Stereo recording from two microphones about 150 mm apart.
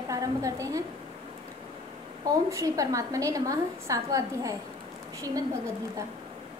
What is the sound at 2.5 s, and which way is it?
A woman's voice, 20° right (ahead or behind).